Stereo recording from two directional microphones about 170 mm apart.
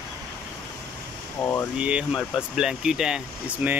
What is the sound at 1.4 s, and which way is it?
Speech, 15° left (ahead or behind).